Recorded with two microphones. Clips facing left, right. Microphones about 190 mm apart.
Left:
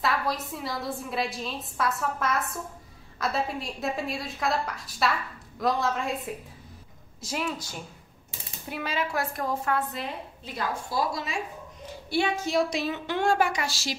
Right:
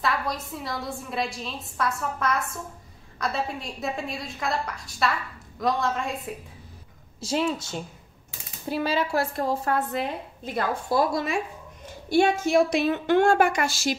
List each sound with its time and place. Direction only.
0.0 s a woman's voice: centre (ahead or behind)
7.2 s a woman's voice: 30° right (ahead or behind)
9.9 s a woman's voice: 50° right (ahead or behind)